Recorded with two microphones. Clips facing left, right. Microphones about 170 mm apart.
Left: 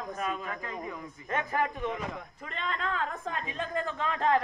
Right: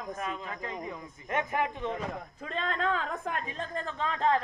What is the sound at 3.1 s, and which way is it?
Speech, 60° right (ahead or behind).